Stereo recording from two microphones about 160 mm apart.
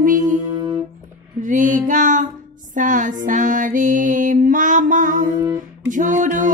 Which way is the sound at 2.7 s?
55° right (ahead or behind).